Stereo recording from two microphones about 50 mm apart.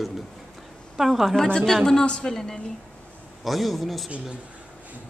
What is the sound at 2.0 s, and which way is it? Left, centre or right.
A woman's voice, centre.